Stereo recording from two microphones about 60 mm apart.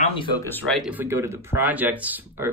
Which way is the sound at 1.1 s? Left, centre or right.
Right.